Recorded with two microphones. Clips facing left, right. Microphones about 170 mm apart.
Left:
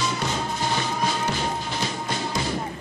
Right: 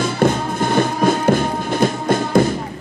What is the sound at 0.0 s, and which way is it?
Music, 55° right (ahead or behind).